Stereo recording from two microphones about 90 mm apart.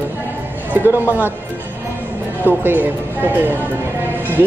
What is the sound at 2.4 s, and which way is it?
Speech, 20° right (ahead or behind).